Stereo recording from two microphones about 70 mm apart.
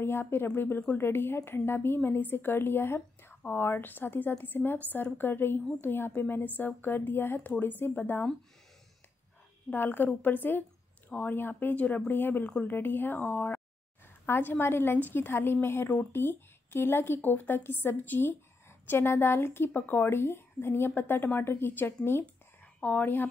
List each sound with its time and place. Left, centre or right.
0.0 s a woman's voice: left
9.7 s a woman's voice: left